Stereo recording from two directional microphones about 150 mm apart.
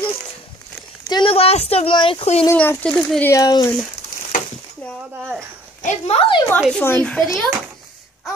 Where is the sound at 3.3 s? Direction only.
25° left (ahead or behind).